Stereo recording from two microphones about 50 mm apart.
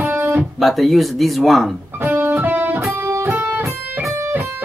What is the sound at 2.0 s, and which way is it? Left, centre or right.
Music, right.